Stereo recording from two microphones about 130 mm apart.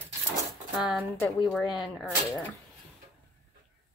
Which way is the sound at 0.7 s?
5° right (ahead or behind).